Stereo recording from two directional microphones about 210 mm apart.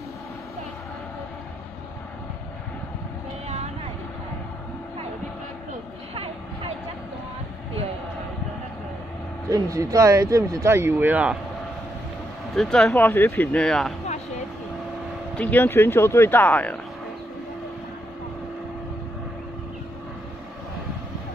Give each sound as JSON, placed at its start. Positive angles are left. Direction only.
{"t": 6.1, "sound": "a sound", "side_deg": -25}
{"t": 9.5, "sound": "speech", "side_deg": -15}
{"t": 12.5, "sound": "speech", "side_deg": 0}
{"t": 15.3, "sound": "speech", "side_deg": 5}